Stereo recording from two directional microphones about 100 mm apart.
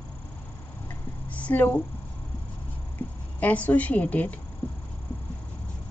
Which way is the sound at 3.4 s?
15° left (ahead or behind).